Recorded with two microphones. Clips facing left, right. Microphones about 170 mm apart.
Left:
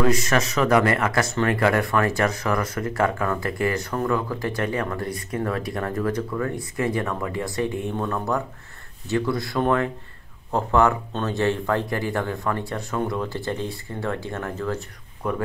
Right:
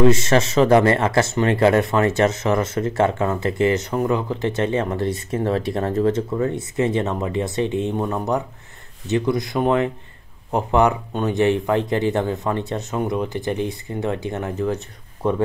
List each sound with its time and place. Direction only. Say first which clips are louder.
0.0 s speech: right 5 dB; 25° right (ahead or behind)